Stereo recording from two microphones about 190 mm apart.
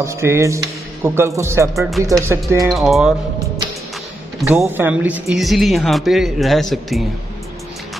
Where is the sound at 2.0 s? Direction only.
15° right (ahead or behind).